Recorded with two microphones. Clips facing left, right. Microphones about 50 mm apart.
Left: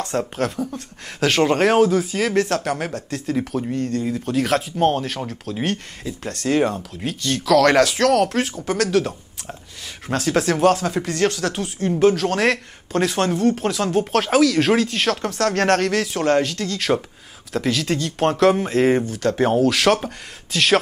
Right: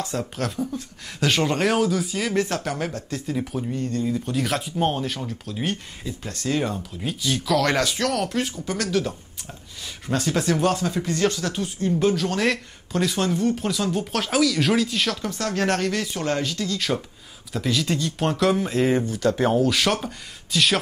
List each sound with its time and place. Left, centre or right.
0.1 s speech: left
0.6 s speech: left
2.1 s speech: left
3.3 s speech: left
3.7 s speech: left
4.1 s speech: left
6.2 s speech: left
10.1 s speech: left
19.3 s speech: left
19.6 s speech: left